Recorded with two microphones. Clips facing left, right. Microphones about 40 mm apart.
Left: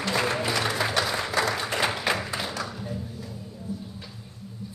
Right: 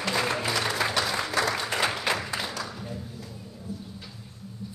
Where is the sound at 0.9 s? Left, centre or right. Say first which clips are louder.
Left 1 dB; centre.